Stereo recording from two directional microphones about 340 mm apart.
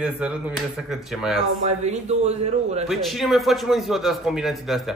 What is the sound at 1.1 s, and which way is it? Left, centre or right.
Speech, centre.